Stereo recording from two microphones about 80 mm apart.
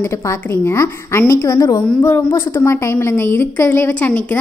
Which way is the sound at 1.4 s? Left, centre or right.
Left.